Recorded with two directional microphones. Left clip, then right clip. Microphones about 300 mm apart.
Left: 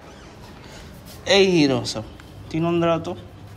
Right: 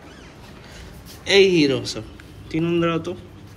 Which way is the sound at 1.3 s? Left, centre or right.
Centre.